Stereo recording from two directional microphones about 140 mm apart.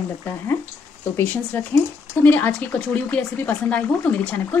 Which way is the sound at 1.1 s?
15° left (ahead or behind).